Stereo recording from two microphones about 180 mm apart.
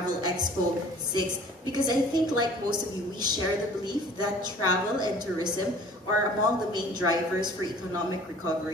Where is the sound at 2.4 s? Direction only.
25° right (ahead or behind).